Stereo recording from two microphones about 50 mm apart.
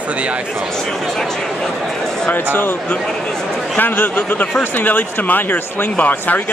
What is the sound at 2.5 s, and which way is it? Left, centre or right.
Speech, left.